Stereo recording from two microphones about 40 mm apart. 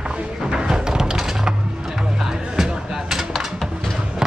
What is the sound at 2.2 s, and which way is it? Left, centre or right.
Music, centre.